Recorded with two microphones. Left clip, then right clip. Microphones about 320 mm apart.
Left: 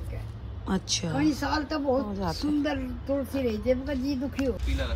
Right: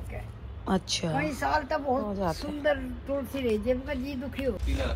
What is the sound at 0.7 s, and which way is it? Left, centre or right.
Speech, centre.